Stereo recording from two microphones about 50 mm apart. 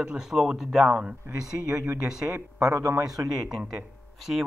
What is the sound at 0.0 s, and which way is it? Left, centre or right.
Speech, centre.